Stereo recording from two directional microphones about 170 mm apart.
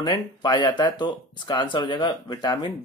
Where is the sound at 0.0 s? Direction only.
25° left (ahead or behind).